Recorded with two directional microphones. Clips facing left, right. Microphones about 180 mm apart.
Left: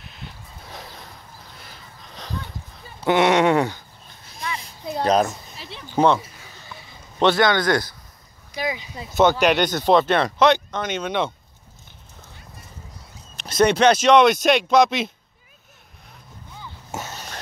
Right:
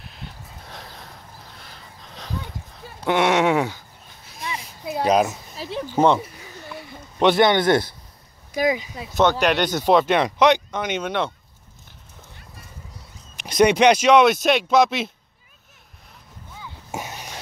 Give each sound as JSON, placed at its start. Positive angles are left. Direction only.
{"t": 0.0, "sound": "a sound", "side_deg": 0}
{"t": 3.0, "sound": "speech", "side_deg": 0}
{"t": 4.8, "sound": "a sound", "side_deg": -10}
{"t": 5.6, "sound": "speech", "side_deg": -40}
{"t": 7.2, "sound": "a man's voice", "side_deg": -20}
{"t": 8.5, "sound": "speech", "side_deg": -45}
{"t": 9.1, "sound": "speech", "side_deg": 5}
{"t": 13.4, "sound": "speech", "side_deg": -15}
{"t": 16.9, "sound": "a sound", "side_deg": -15}